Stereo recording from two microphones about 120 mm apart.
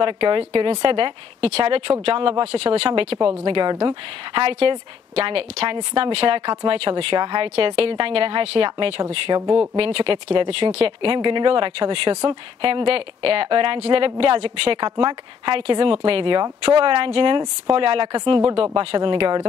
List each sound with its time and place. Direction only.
0.0 s a woman's voice: 45° right (ahead or behind)
4.4 s a woman's voice: 50° right (ahead or behind)
9.3 s speech: 30° right (ahead or behind)
9.8 s a woman's voice: 45° right (ahead or behind)
11.1 s a woman's voice: 40° right (ahead or behind)